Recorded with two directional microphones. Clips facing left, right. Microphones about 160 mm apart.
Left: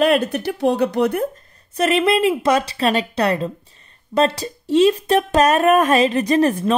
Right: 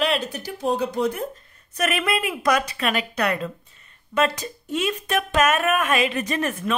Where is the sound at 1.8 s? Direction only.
25° left (ahead or behind).